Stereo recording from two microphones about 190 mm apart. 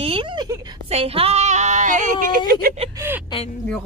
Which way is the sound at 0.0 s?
30° right (ahead or behind).